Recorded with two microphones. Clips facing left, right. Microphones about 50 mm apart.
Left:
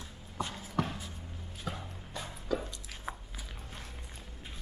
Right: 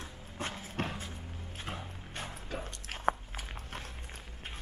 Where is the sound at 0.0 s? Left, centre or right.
Right.